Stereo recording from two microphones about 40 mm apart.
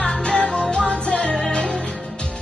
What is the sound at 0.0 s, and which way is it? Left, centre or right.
Music, left.